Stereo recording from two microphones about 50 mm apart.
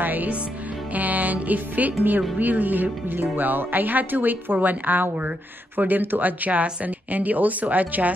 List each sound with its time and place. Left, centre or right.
0.0 s music: right
2.3 s speech: right